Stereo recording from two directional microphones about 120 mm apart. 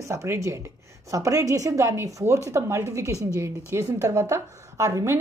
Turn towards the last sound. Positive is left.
turn(degrees=-25)  # may be behind; listen again after turning